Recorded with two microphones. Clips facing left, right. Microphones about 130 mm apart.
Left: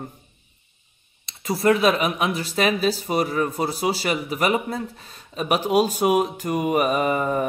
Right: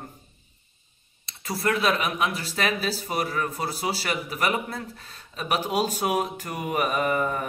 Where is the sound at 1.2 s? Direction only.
20° left (ahead or behind).